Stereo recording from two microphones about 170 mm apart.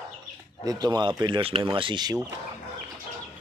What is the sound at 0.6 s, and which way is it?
Speech, 20° right (ahead or behind).